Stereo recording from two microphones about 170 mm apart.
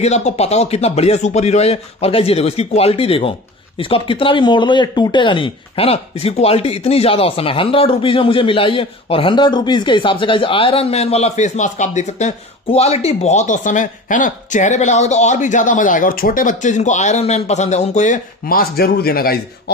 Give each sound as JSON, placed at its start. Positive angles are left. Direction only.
{"t": 0.0, "sound": "speech", "side_deg": 40}